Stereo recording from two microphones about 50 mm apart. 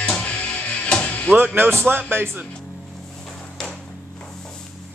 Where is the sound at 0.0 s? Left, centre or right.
Centre.